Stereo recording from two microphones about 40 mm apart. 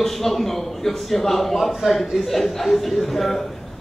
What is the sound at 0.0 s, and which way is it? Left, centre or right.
A man's voice, centre.